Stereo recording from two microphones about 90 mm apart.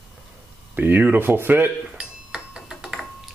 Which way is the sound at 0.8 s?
20° right (ahead or behind).